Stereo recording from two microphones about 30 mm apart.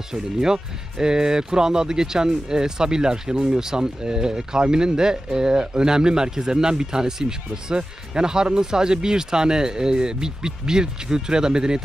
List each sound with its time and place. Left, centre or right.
0.1 s speech: right